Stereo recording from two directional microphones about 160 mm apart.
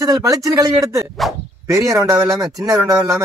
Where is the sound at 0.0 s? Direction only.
20° right (ahead or behind).